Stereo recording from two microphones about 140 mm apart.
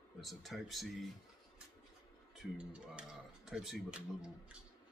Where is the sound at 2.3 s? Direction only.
5° right (ahead or behind).